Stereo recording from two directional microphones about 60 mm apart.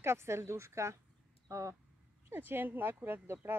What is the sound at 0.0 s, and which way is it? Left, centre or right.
A woman's voice, right.